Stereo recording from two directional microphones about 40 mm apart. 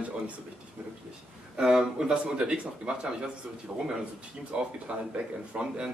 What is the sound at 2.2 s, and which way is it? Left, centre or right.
Speech, right.